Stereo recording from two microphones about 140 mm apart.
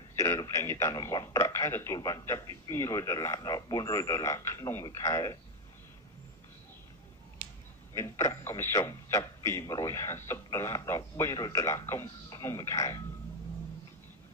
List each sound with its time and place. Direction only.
0.2 s a man's voice: 20° left (ahead or behind)
7.9 s a man's voice: 20° left (ahead or behind)